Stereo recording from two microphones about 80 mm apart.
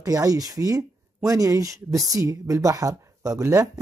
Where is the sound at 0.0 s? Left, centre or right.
Right.